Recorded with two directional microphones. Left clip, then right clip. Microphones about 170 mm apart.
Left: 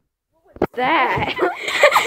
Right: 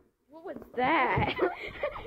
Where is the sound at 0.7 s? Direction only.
10° left (ahead or behind).